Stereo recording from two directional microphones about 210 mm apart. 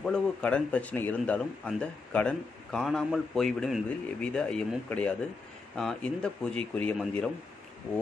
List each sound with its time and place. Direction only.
0.0 s speech: 5° left (ahead or behind)